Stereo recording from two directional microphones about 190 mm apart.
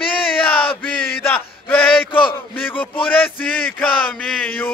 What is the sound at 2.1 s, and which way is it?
Speech, 25° left (ahead or behind).